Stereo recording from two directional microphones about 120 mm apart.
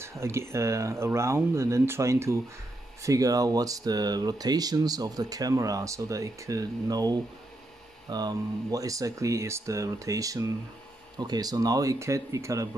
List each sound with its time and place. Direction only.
0.0 s speech: 20° right (ahead or behind)